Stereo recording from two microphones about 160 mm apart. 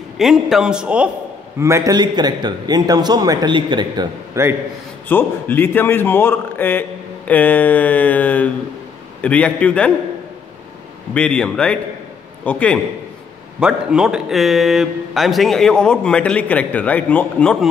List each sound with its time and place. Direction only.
0.2 s a man's voice: centre (ahead or behind)
1.6 s a man's voice: 20° right (ahead or behind)
5.0 s a man's voice: 10° left (ahead or behind)
11.1 s a man's voice: 5° left (ahead or behind)
13.6 s a man's voice: 5° right (ahead or behind)